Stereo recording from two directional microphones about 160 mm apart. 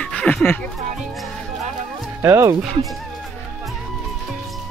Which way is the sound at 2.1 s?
15° right (ahead or behind).